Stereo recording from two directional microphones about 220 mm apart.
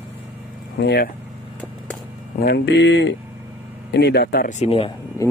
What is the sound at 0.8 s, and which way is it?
Speech, 45° left (ahead or behind).